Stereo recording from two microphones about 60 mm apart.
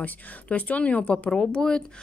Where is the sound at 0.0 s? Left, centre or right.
Left.